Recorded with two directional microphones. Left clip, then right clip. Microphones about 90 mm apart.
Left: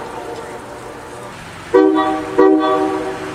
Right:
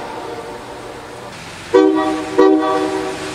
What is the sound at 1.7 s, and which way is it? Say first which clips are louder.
Vehicle: even; 20° right (ahead or behind).